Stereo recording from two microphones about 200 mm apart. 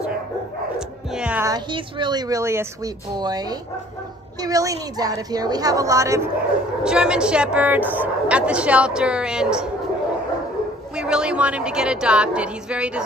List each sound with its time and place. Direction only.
0.7 s music: 5° right (ahead or behind)
1.5 s a woman's voice: 20° right (ahead or behind)
6.8 s a woman's voice: 5° right (ahead or behind)
11.0 s a woman's voice: 5° right (ahead or behind)